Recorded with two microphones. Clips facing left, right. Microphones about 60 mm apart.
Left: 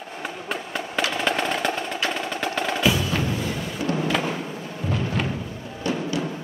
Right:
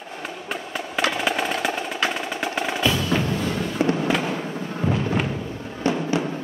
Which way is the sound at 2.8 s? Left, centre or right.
Centre.